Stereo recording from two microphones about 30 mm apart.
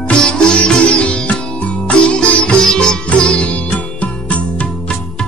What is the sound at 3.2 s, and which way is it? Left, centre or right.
Music, left.